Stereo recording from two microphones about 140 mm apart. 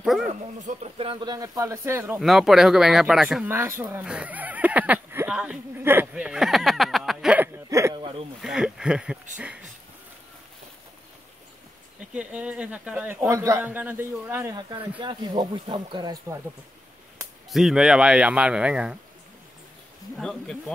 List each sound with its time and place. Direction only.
0.2 s speech: 60° right (ahead or behind)
0.9 s speech: 40° right (ahead or behind)
1.3 s speech: 25° right (ahead or behind)
2.2 s speech: centre (ahead or behind)
3.4 s speech: 15° right (ahead or behind)
7.4 s a sound: 20° right (ahead or behind)
7.9 s a sound: 35° right (ahead or behind)
8.4 s a sound: 5° right (ahead or behind)
12.1 s a man's voice: 10° right (ahead or behind)
14.5 s speech: 30° right (ahead or behind)
17.5 s speech: centre (ahead or behind)
20.2 s speech: 5° left (ahead or behind)